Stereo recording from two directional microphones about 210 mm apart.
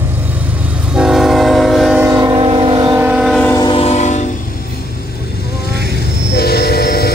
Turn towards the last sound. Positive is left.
turn(degrees=45)  # may be behind; listen again after turning